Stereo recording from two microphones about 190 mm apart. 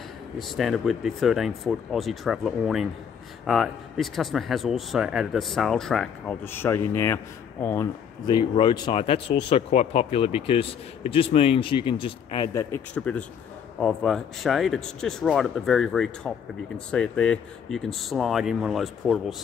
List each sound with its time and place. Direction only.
0.4 s speech: centre (ahead or behind); by 12.4 s 25° left (ahead or behind)
12.5 s speech: 10° left (ahead or behind)